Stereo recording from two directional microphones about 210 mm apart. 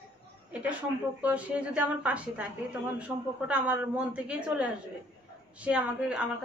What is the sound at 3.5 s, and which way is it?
A woman's voice, 5° right (ahead or behind).